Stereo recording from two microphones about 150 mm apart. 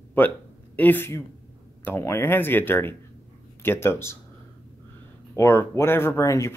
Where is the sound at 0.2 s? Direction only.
10° left (ahead or behind).